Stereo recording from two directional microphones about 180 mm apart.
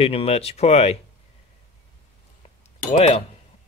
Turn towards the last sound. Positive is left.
turn(degrees=35)  # may be behind; listen again after turning